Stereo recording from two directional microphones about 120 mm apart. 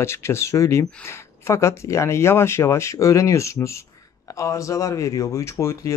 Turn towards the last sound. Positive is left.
turn(degrees=25)  # may be behind; listen again after turning